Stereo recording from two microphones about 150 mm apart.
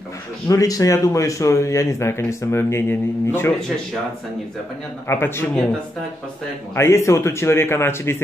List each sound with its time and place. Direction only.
0.5 s speech: 20° left (ahead or behind)
5.0 s speech: 15° left (ahead or behind)
6.7 s speech: 20° left (ahead or behind)